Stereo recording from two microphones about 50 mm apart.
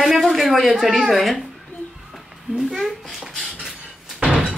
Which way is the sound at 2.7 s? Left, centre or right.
Centre.